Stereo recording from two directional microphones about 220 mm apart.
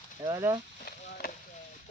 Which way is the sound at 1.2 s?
45° left (ahead or behind).